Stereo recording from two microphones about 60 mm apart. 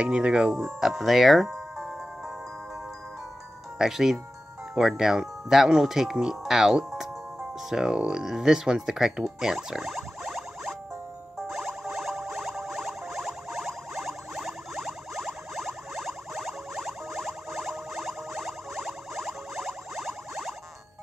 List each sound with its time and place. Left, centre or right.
0.0 s speech: centre
0.7 s music: centre
3.7 s speech: centre
11.4 s music: centre